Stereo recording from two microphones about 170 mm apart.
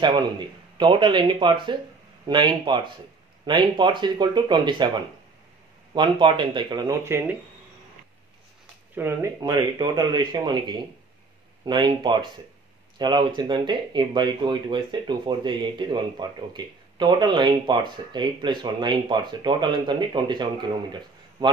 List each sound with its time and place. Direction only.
0.7 s speech: 30° right (ahead or behind)
8.9 s speech: 15° right (ahead or behind)